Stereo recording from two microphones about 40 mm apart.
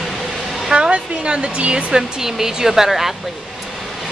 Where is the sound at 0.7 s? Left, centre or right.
Right.